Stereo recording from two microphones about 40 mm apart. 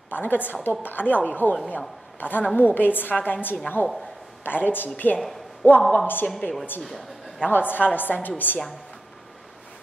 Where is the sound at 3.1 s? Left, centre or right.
Left.